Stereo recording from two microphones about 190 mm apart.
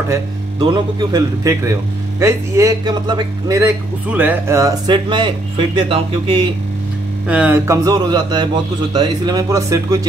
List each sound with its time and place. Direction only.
0.1 s a man's voice: 25° right (ahead or behind)
7.2 s a man's voice: 10° right (ahead or behind)